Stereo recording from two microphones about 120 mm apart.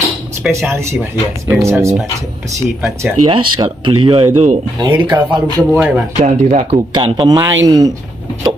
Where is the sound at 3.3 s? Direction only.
45° right (ahead or behind).